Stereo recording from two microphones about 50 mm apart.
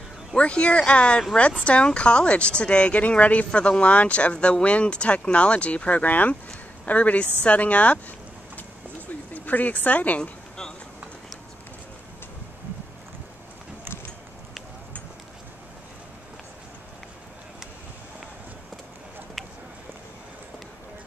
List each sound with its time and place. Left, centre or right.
0.4 s speech: left
9.3 s speech: left